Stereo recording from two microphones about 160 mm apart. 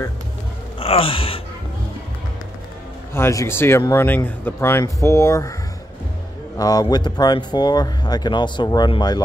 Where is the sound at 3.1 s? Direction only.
15° left (ahead or behind).